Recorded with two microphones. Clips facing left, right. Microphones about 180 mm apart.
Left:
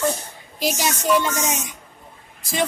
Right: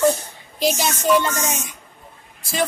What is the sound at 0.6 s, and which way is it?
A woman's voice, 10° left (ahead or behind).